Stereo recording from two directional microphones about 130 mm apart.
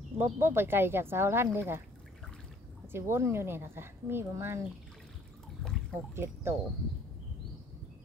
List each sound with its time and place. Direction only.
0.2 s speech: 20° right (ahead or behind)
2.9 s speech: 20° right (ahead or behind)
5.6 s a sound: 5° left (ahead or behind)
6.1 s speech: 20° right (ahead or behind)